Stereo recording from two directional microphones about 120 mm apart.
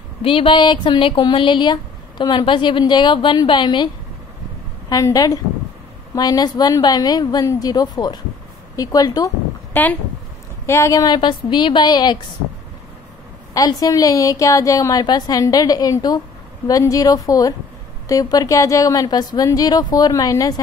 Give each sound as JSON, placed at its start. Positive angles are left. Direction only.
{"t": 0.2, "sound": "speech", "side_deg": 50}
{"t": 9.8, "sound": "speech", "side_deg": 15}
{"t": 10.7, "sound": "a woman's voice", "side_deg": 25}
{"t": 11.1, "sound": "speech", "side_deg": 40}
{"t": 13.5, "sound": "a woman's voice", "side_deg": 30}